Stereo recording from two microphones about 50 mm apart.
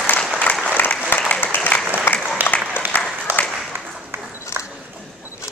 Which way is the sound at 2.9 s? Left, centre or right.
Left.